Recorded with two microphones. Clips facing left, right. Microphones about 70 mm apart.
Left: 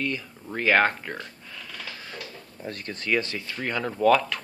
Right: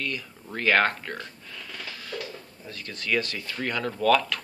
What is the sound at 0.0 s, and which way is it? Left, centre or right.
Speech, centre.